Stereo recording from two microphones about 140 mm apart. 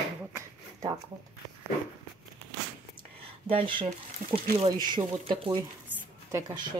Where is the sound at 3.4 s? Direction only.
40° right (ahead or behind).